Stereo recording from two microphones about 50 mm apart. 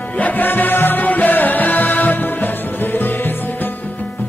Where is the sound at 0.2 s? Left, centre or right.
Left.